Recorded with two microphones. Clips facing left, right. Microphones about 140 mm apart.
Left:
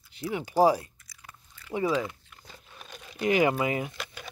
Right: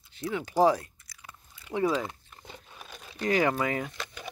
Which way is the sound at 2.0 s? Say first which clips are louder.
Even; 30° right (ahead or behind).